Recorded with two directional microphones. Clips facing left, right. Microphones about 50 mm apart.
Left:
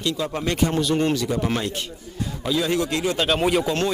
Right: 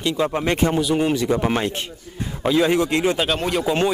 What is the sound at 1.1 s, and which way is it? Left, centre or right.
Speech, right.